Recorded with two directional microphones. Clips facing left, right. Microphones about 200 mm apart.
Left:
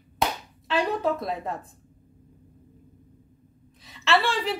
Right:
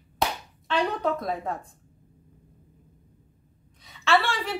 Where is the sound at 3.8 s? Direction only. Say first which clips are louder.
Even; centre (ahead or behind).